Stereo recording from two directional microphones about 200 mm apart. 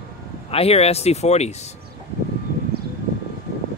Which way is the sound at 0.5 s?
30° left (ahead or behind).